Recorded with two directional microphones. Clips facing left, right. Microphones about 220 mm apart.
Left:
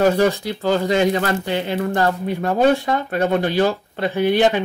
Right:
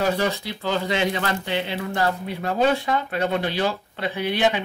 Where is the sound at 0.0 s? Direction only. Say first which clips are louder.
Left 7 dB; 45° left (ahead or behind).